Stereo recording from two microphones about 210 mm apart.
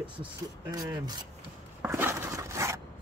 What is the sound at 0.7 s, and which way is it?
Speech, 20° right (ahead or behind).